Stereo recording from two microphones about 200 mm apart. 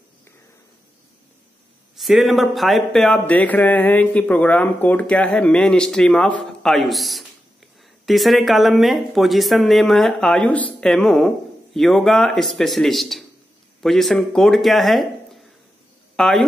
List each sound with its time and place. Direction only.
2.0 s speech: centre (ahead or behind)